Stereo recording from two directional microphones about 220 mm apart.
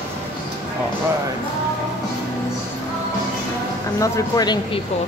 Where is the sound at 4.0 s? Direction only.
15° left (ahead or behind).